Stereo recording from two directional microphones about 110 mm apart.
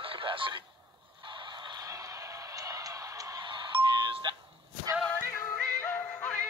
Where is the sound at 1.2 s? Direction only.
45° right (ahead or behind).